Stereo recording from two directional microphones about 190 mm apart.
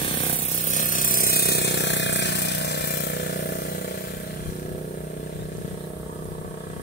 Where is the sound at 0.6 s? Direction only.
45° left (ahead or behind).